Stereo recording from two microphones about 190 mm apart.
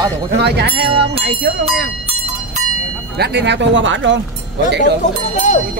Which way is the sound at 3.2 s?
65° right (ahead or behind).